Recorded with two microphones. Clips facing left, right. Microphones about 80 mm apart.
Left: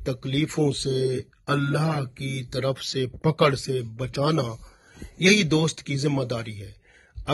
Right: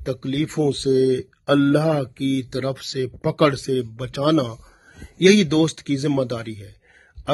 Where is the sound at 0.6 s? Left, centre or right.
Right.